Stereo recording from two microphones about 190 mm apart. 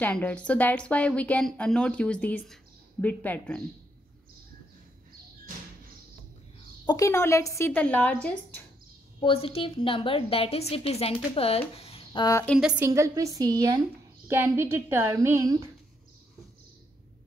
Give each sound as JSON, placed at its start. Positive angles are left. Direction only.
{"t": 0.0, "sound": "a woman's voice", "side_deg": 10}
{"t": 6.9, "sound": "a woman's voice", "side_deg": 15}
{"t": 9.2, "sound": "a woman's voice", "side_deg": 30}
{"t": 11.7, "sound": "a sound", "side_deg": 30}
{"t": 12.4, "sound": "speech", "side_deg": -5}